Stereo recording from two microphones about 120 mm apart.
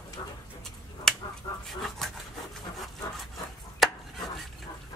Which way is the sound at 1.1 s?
5° left (ahead or behind).